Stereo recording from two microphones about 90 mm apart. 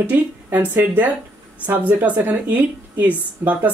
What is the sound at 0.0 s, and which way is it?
Speech, 20° right (ahead or behind).